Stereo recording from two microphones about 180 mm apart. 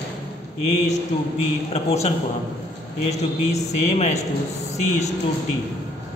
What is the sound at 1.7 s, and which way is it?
Speech, 35° left (ahead or behind).